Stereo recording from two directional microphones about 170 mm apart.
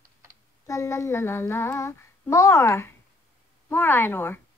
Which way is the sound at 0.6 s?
20° left (ahead or behind).